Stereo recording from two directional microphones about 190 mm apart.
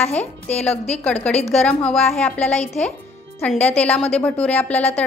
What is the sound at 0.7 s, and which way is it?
Speech, 35° left (ahead or behind).